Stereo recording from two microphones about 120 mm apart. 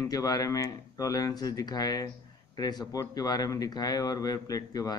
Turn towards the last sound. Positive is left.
turn(degrees=30)  # may be behind; listen again after turning